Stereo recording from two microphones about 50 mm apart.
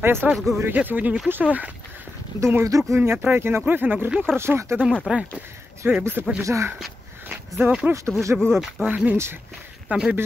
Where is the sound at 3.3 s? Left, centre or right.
Right.